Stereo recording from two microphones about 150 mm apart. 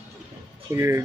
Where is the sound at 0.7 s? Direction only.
20° right (ahead or behind).